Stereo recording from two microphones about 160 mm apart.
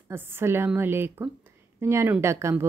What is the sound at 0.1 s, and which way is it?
Speech, 15° right (ahead or behind).